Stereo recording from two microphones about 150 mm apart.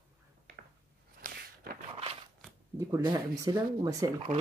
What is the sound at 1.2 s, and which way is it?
Walk, 80° right.